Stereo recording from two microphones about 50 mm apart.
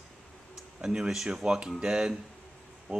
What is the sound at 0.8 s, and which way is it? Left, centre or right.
Speech, centre.